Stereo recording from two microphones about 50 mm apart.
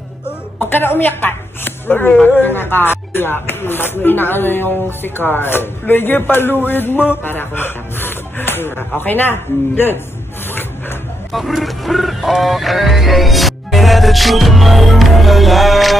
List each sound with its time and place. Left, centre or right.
0.6 s speech: left
11.3 s music: centre